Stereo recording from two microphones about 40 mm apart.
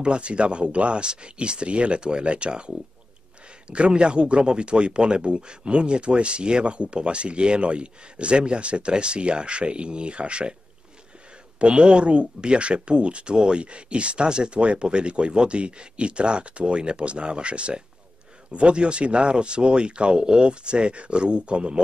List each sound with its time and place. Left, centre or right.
0.0 s speech: right
11.6 s speech: right